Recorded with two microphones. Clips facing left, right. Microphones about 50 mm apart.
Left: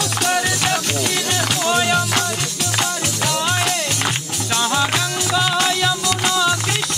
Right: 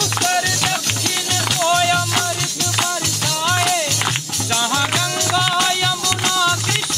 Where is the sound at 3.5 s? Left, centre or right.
Centre.